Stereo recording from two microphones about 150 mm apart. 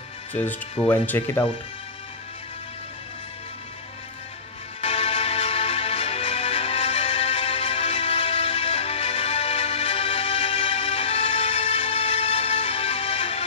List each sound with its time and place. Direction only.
0.3 s speech: 10° left (ahead or behind)
4.8 s music: 40° left (ahead or behind)